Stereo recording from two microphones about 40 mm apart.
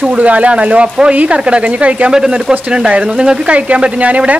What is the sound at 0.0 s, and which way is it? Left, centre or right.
Speech, right.